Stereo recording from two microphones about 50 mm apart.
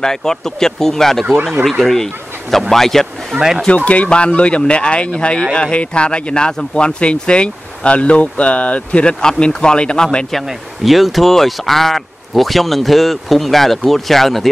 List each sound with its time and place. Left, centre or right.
0.0 s speech: centre
2.7 s a sound: centre
3.3 s speech: centre
3.6 s speech: left
9.2 s speech: centre
10.3 s speech: centre